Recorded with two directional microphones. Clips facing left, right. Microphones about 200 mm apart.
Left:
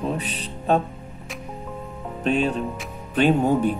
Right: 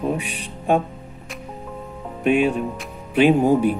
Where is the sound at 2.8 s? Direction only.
10° right (ahead or behind).